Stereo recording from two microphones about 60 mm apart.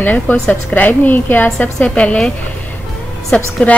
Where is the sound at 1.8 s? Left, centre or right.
Centre.